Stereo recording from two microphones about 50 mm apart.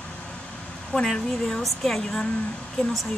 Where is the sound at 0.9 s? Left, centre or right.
Centre.